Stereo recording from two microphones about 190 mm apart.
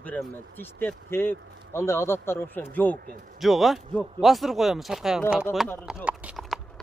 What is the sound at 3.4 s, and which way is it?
Speech, centre (ahead or behind).